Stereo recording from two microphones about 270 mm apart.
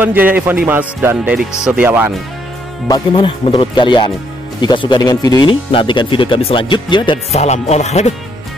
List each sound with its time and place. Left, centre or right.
0.0 s speech: centre
2.9 s speech: centre